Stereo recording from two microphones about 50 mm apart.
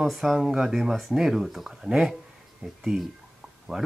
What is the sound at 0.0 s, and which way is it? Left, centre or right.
Speech, centre.